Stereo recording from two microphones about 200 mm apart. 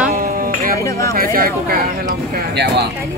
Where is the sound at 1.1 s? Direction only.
45° right (ahead or behind).